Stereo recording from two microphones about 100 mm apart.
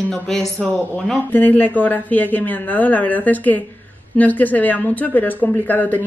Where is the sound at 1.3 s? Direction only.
15° left (ahead or behind).